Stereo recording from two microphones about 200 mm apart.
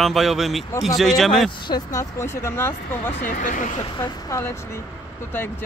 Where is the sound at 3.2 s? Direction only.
40° left (ahead or behind).